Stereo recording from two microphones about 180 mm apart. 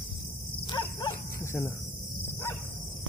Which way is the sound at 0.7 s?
25° left (ahead or behind).